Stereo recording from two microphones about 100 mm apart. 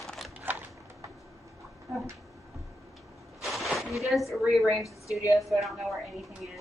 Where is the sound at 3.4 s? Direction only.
Centre (ahead or behind).